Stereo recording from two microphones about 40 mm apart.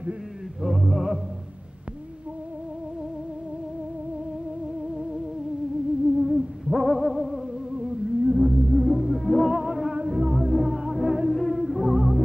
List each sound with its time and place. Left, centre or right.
0.6 s music: centre
6.0 s music: centre
9.9 s music: right
10.3 s music: centre
11.3 s music: centre